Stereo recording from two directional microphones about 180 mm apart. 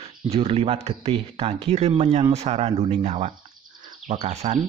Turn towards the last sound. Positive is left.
turn(degrees=-40)  # may be behind; listen again after turning